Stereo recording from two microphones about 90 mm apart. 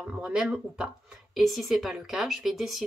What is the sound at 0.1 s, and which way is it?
Speech, 10° right (ahead or behind).